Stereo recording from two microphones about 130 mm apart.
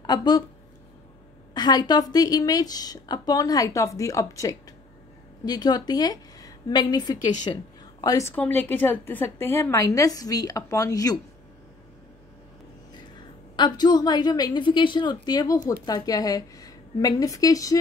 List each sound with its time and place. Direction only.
0.0 s speech: 30° left (ahead or behind)
1.5 s a woman's voice: 35° left (ahead or behind)
8.0 s a woman's voice: 25° left (ahead or behind)
8.4 s a woman's voice: 15° left (ahead or behind)
13.6 s a woman's voice: 35° left (ahead or behind)